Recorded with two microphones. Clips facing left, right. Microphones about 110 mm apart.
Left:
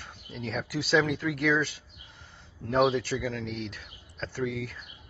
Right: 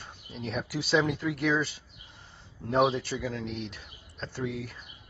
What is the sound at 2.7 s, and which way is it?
Speech, centre (ahead or behind).